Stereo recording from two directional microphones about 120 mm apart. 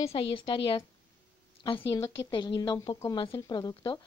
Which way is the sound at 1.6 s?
35° left (ahead or behind).